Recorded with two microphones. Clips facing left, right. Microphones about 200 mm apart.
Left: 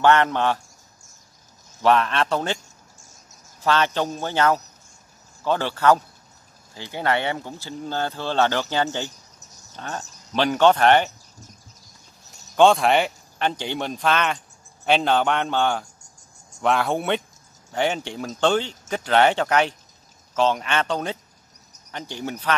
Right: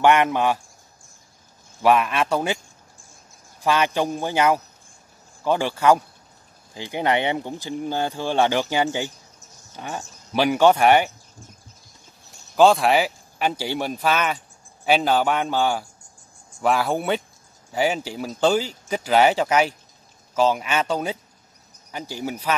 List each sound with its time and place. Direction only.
0.0 s speech: 15° right (ahead or behind)
1.8 s speech: 10° right (ahead or behind)
3.0 s a sound: 40° left (ahead or behind)
3.6 s speech: 10° right (ahead or behind)
12.5 s speech: centre (ahead or behind)